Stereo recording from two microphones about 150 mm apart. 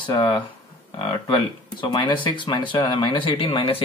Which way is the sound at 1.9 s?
30° left (ahead or behind).